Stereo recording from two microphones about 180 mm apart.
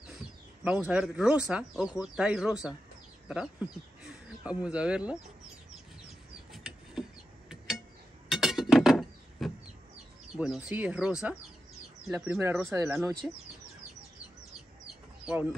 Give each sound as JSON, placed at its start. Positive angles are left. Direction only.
{"t": 0.7, "sound": "speech", "side_deg": -5}
{"t": 6.5, "sound": "a sound", "side_deg": 0}
{"t": 8.3, "sound": "chink", "side_deg": 0}
{"t": 10.3, "sound": "speech", "side_deg": -5}